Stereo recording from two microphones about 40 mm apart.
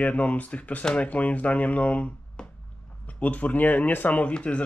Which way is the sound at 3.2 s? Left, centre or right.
Left.